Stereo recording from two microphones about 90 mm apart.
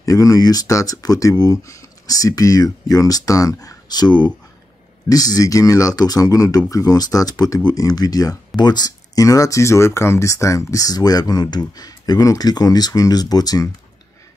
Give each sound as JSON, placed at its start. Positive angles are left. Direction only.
{"t": 0.0, "sound": "speech", "side_deg": 40}